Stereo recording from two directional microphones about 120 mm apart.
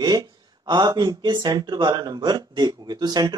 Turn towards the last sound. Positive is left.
turn(degrees=-35)  # may be behind; listen again after turning